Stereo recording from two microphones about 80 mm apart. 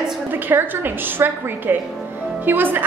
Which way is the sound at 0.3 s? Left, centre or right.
Right.